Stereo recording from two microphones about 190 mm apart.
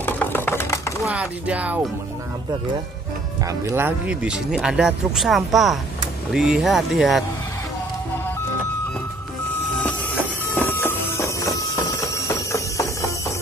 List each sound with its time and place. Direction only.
0.0 s chopping: 10° left (ahead or behind)
1.0 s speech: 5° right (ahead or behind)
3.7 s speech: 10° right (ahead or behind)
10.5 s a sound: 15° left (ahead or behind)
12.3 s music: 15° left (ahead or behind)